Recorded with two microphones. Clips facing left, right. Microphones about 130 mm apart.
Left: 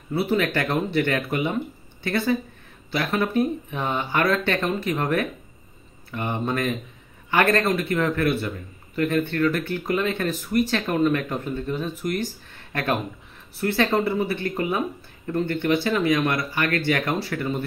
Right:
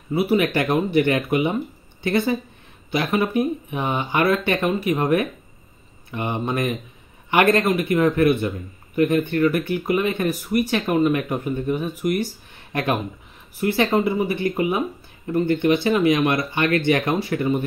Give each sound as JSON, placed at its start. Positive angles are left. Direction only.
{"t": 0.1, "sound": "speech", "side_deg": -15}